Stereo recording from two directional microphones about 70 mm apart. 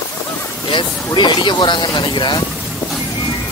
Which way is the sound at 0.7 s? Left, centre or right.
Left.